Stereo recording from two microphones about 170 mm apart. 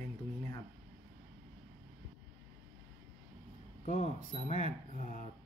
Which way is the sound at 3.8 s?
45° left (ahead or behind).